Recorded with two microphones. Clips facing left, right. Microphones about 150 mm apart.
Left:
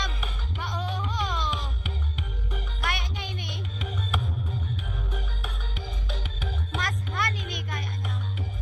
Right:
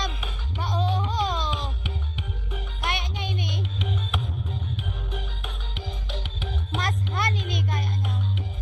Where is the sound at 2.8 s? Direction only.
20° right (ahead or behind).